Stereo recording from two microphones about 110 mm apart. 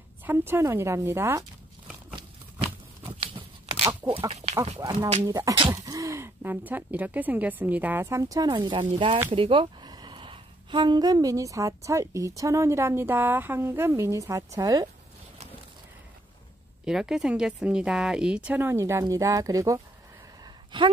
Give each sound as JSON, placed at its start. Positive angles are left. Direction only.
{"t": 0.2, "sound": "speech", "side_deg": -20}
{"t": 3.2, "sound": "a sound", "side_deg": -55}
{"t": 4.3, "sound": "duck", "side_deg": -70}
{"t": 5.2, "sound": "speech", "side_deg": -30}
{"t": 8.5, "sound": "speech", "side_deg": -45}
{"t": 16.8, "sound": "speech", "side_deg": -5}
{"t": 20.4, "sound": "a sound", "side_deg": -45}